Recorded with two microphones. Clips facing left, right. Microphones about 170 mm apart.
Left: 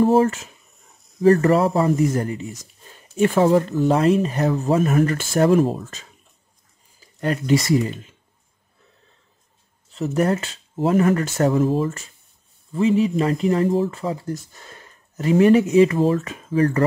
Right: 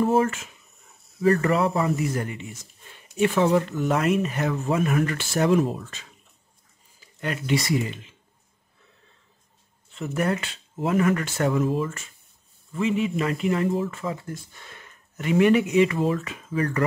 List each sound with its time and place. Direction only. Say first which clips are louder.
0.0 s speech: left 5 dB; 35° left (ahead or behind)
7.2 s speech: left 6 dB; 40° left (ahead or behind)
9.8 s speech: left 5 dB; 35° left (ahead or behind)